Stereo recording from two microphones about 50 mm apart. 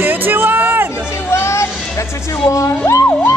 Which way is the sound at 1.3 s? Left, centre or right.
Left.